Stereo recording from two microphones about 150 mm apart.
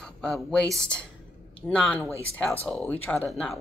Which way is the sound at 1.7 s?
10° left (ahead or behind).